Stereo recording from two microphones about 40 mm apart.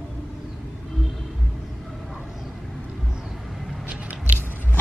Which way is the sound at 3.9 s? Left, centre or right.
Right.